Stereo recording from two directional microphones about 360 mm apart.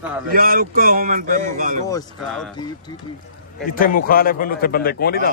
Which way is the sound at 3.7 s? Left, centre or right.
Left.